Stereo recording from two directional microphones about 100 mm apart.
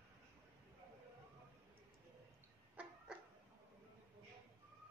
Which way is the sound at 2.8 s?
15° right (ahead or behind).